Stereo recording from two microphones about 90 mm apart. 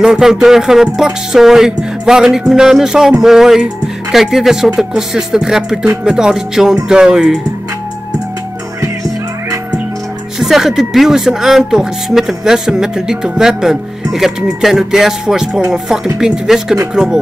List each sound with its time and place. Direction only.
0.0 s music: 5° right (ahead or behind)
6.0 s speech: 5° right (ahead or behind)
10.4 s music: 5° right (ahead or behind)
16.9 s speech: 5° right (ahead or behind)